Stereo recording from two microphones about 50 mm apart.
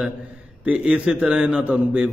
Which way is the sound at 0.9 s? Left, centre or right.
Centre.